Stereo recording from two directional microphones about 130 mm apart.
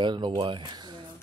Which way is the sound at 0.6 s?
35° right (ahead or behind).